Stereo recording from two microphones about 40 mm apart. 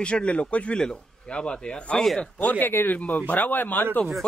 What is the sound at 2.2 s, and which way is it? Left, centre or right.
Speech, left.